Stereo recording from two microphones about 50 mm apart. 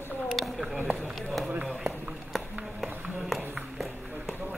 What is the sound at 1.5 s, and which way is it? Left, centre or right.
Speech, right.